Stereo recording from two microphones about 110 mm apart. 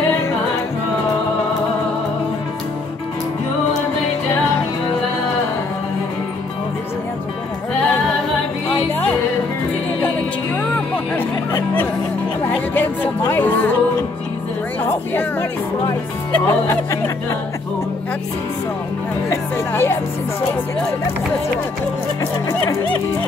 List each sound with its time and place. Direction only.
11.1 s music: 20° left (ahead or behind)
13.3 s music: 15° left (ahead or behind)
16.4 s speech: 25° left (ahead or behind)
19.7 s music: 20° left (ahead or behind)